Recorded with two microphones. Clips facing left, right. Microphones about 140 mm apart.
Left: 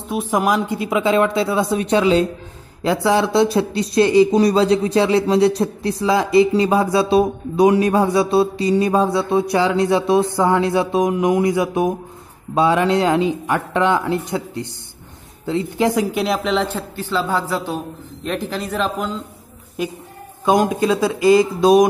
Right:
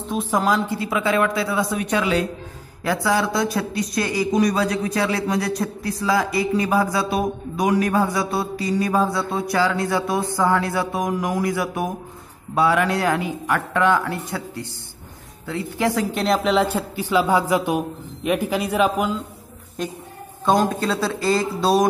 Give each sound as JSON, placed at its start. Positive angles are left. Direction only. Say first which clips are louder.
{"t": 0.1, "sound": "speech", "louder": "left 2 dB", "side_deg": 15}
{"t": 19.8, "sound": "speech", "louder": "left 3 dB", "side_deg": 5}